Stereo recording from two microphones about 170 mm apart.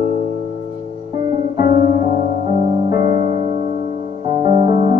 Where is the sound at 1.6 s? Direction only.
35° right (ahead or behind).